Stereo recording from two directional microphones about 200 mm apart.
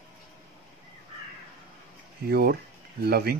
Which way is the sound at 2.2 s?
50° right (ahead or behind).